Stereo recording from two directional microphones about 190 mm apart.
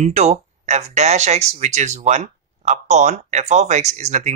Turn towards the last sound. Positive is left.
turn(degrees=-40)  # may be behind; listen again after turning